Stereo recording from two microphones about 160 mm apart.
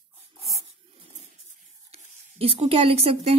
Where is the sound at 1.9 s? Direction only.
40° right (ahead or behind).